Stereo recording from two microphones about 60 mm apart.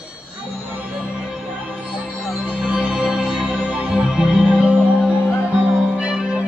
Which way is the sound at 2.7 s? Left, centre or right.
Centre.